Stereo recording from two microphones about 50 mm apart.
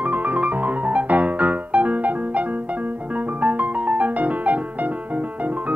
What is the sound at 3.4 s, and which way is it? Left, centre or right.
Music, right.